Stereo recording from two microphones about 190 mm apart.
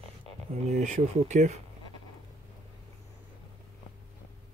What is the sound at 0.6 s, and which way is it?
Speech, 35° right (ahead or behind).